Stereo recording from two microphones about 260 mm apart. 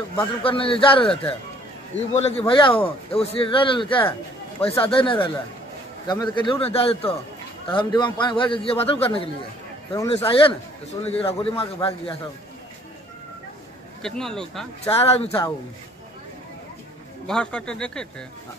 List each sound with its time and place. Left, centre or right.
0.1 s a man's voice: centre
14.0 s a man's voice: centre
14.9 s a man's voice: left
17.3 s a man's voice: centre